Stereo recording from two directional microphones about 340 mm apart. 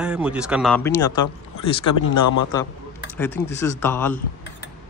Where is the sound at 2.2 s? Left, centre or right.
Left.